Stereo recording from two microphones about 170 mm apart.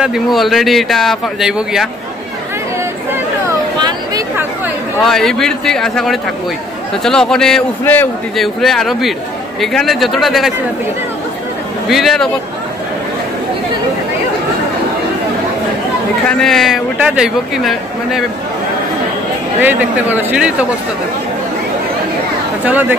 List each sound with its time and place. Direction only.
0.0 s speech: centre (ahead or behind)
3.4 s a sound: 20° right (ahead or behind)
5.0 s speech: centre (ahead or behind)
11.9 s speech: centre (ahead or behind)
16.3 s speech: centre (ahead or behind)
19.6 s speech: 10° right (ahead or behind)
22.7 s speech: 10° right (ahead or behind)